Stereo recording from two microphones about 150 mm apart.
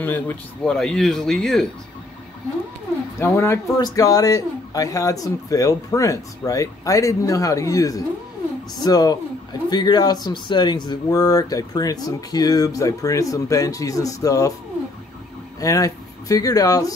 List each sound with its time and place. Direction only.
0.0 s speech: 15° left (ahead or behind)
0.7 s speech: 5° left (ahead or behind)
3.2 s speech: 15° left (ahead or behind)
15.6 s speech: 20° left (ahead or behind)